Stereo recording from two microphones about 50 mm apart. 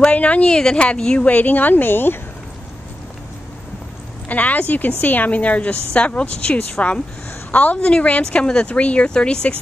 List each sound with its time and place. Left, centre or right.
0.0 s a woman's voice: left
1.2 s speech: left
4.3 s a woman's voice: left